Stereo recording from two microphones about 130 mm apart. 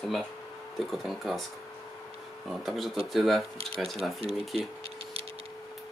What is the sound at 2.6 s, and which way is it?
Speech, centre (ahead or behind).